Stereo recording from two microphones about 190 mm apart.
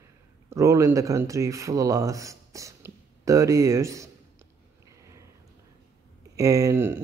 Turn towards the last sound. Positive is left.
turn(degrees=-15)  # may be behind; listen again after turning